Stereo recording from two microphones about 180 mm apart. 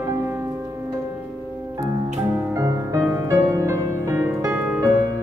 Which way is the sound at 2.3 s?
15° right (ahead or behind).